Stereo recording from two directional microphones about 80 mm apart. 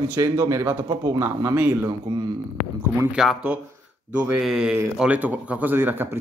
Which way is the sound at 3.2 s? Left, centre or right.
Centre.